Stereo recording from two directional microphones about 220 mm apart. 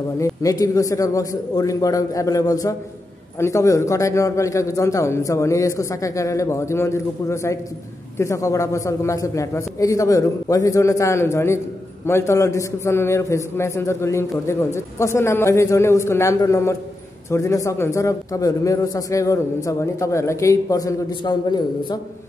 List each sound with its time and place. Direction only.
0.2 s a man's voice: 15° left (ahead or behind)